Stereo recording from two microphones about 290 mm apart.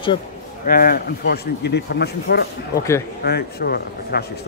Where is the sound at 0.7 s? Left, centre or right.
Left.